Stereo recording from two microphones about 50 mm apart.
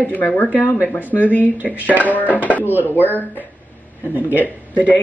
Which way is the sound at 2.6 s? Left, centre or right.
Left.